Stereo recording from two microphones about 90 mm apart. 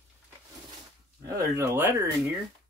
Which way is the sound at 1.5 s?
25° right (ahead or behind).